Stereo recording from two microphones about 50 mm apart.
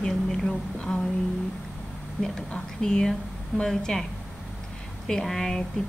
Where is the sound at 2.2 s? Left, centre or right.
Centre.